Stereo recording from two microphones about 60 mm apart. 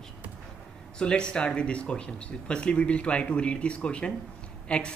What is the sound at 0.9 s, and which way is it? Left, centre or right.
Speech, centre.